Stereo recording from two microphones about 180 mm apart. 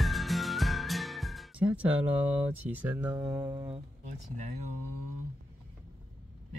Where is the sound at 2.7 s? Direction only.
10° right (ahead or behind).